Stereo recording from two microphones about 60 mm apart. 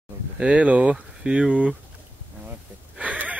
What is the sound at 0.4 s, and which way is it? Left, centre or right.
Speech, centre.